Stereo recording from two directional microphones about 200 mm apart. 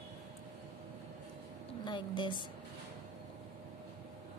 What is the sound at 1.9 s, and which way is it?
Speech, 25° left (ahead or behind).